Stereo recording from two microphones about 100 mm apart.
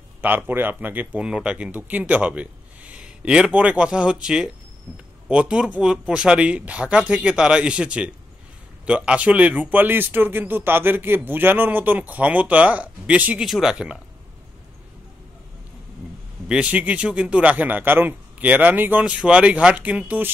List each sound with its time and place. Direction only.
0.2 s a man's voice: 20° right (ahead or behind)
13.4 s speech: 5° right (ahead or behind)
16.4 s a man's voice: 10° right (ahead or behind)